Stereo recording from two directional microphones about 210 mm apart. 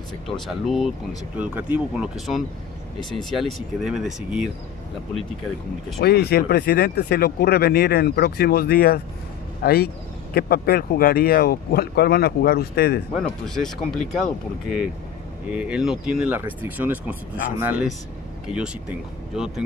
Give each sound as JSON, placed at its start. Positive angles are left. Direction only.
{"t": 0.5, "sound": "speech", "side_deg": 0}
{"t": 6.0, "sound": "speech", "side_deg": 50}
{"t": 13.2, "sound": "speech", "side_deg": 0}
{"t": 15.5, "sound": "speech", "side_deg": -5}
{"t": 19.3, "sound": "speech", "side_deg": -5}